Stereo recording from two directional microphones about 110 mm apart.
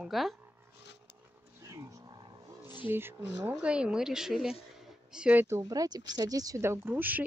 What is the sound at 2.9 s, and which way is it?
Speech, 20° right (ahead or behind).